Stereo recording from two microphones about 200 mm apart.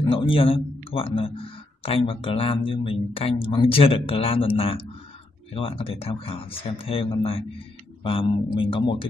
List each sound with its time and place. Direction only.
0.0 s speech: 25° left (ahead or behind)